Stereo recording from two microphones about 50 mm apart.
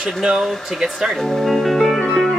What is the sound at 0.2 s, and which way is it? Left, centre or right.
Speech, centre.